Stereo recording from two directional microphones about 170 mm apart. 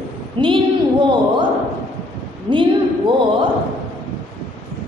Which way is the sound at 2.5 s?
30° right (ahead or behind).